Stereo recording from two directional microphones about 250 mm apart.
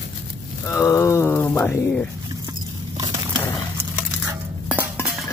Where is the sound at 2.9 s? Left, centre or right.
Centre.